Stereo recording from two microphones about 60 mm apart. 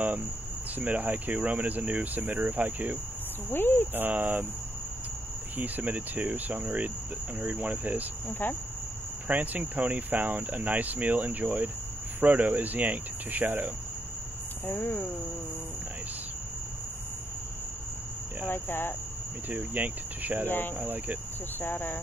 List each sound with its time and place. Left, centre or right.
0.7 s speech: right
3.4 s hum: left
3.9 s speech: right
5.6 s speech: right
8.3 s hum: left
9.3 s speech: right
14.7 s speech: left
18.5 s hum: left
19.5 s speech: right
20.4 s hum: left
20.8 s speech: right
21.5 s hum: left